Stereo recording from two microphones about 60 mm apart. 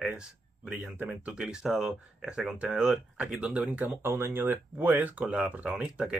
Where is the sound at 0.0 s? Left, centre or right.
Centre.